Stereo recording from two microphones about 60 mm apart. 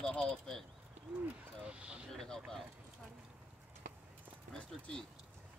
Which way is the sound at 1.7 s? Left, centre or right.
Centre.